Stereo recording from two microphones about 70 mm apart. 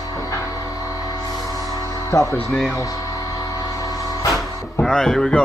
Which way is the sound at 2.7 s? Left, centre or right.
Left.